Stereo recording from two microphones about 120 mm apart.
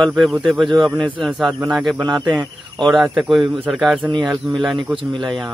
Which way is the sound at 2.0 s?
40° right (ahead or behind).